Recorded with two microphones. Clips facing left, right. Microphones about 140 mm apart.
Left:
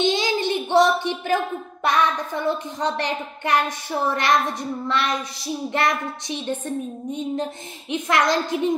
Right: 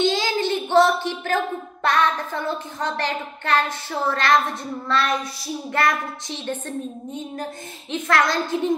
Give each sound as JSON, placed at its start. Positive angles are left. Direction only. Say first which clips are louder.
{"t": 0.0, "sound": "a woman's voice", "louder": "even", "side_deg": 20}
{"t": 7.9, "sound": "speech", "louder": "left 1 dB", "side_deg": 15}